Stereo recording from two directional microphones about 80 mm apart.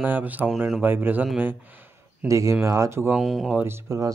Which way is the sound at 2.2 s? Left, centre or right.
Right.